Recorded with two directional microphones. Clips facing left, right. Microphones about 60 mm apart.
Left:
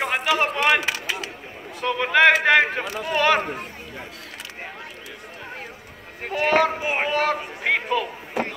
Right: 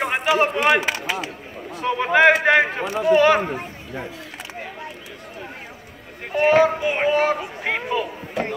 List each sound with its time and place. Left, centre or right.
0.0 s speech: centre
6.3 s speech: centre
6.8 s a sound: centre
7.1 s speech: centre